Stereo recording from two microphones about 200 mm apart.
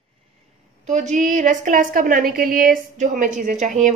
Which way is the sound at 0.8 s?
40° right (ahead or behind).